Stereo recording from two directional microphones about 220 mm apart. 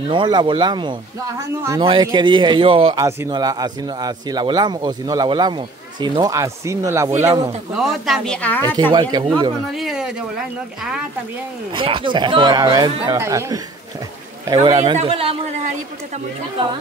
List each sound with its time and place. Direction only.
0.1 s a man's voice: 20° right (ahead or behind)
7.7 s speech: centre (ahead or behind)
8.9 s speech: 20° right (ahead or behind)
9.8 s speech: centre (ahead or behind)
11.7 s a man's voice: 25° right (ahead or behind)